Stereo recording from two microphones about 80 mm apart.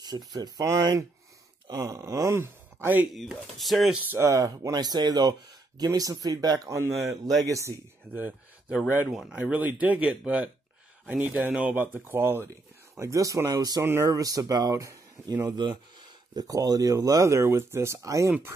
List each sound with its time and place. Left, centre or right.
0.0 s speech: right
3.1 s speech: centre
4.3 s speech: right
4.7 s speech: right
7.0 s speech: centre
7.4 s speech: right
8.1 s speech: right
13.0 s speech: right
15.4 s speech: right
16.3 s speech: right